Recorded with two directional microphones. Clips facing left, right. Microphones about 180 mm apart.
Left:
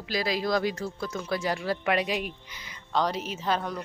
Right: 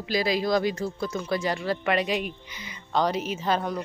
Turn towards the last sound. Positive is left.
turn(degrees=-5)  # may be behind; listen again after turning